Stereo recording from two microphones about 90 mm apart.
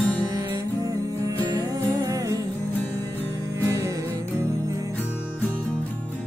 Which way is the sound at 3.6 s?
35° right (ahead or behind).